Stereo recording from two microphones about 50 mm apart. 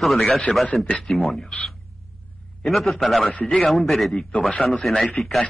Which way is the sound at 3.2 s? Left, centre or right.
Left.